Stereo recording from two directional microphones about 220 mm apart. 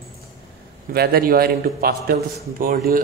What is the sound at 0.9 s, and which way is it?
A man's voice, 45° right (ahead or behind).